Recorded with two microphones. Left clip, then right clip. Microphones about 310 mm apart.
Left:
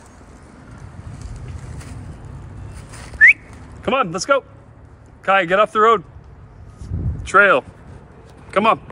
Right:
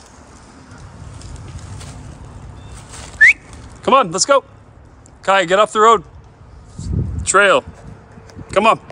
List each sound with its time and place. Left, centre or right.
3.8 s speech: centre
6.8 s a sound: right
7.2 s speech: centre